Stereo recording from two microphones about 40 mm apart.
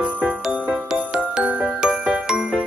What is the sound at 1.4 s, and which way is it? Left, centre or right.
Jingle, right.